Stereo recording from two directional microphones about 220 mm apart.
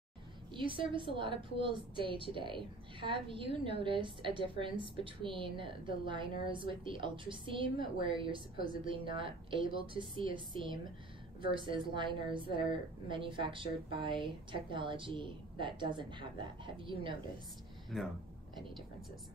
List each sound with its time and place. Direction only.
0.5 s a woman's voice: 20° right (ahead or behind)